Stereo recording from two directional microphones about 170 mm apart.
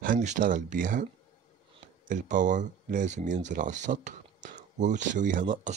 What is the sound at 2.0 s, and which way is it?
Speech, 50° right (ahead or behind).